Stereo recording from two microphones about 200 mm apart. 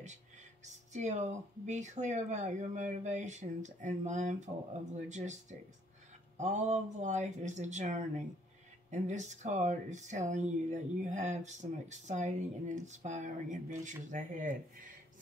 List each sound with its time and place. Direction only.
0.9 s speech: 35° right (ahead or behind)